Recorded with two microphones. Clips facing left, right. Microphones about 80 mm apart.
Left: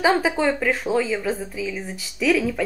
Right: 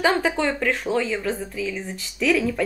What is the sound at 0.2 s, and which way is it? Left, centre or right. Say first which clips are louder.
A woman's voice: left 1 dB; centre.